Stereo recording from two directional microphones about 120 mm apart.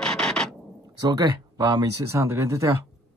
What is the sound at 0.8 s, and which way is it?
Speech, 30° right (ahead or behind).